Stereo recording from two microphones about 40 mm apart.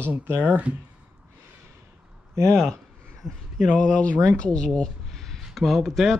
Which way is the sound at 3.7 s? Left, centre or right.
Left.